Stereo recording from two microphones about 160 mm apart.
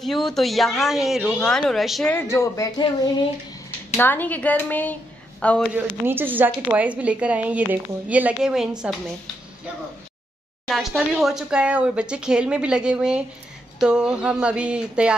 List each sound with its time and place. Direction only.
0.0 s speech: centre (ahead or behind)
2.1 s speech: 15° left (ahead or behind)
4.0 s a woman's voice: 10° left (ahead or behind)
6.0 s a woman's voice: 10° right (ahead or behind)
10.7 s speech: centre (ahead or behind)